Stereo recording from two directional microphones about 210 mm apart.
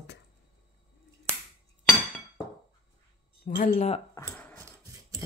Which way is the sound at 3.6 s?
35° left (ahead or behind).